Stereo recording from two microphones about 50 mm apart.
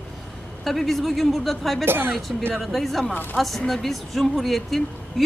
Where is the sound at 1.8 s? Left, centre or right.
Right.